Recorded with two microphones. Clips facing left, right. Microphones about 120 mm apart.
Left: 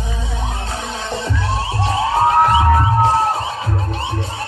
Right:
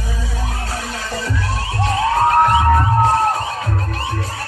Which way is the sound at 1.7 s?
30° left (ahead or behind).